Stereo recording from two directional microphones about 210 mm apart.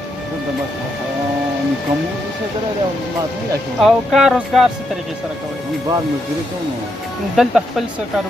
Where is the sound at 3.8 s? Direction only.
Centre (ahead or behind).